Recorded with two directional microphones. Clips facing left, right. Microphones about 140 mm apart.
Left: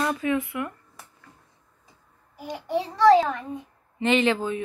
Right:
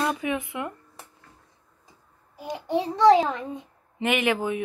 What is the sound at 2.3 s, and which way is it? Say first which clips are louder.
A child's voice: right 1 dB; 20° right (ahead or behind).